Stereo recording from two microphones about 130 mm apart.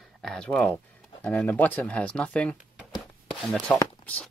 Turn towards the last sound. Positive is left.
turn(degrees=10)  # may be behind; listen again after turning